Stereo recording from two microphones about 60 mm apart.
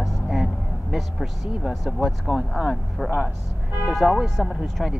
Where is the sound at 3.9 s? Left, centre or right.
Centre.